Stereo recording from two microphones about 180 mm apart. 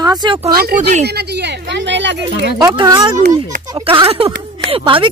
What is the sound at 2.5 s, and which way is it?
Speech, 20° right (ahead or behind).